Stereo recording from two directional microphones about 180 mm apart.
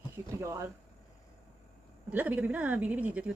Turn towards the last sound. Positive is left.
turn(degrees=-5)  # may be behind; listen again after turning